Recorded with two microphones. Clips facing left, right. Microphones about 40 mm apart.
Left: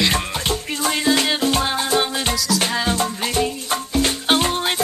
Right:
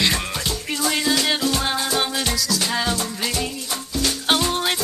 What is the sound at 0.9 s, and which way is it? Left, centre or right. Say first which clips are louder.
Music: left 3 dB; left.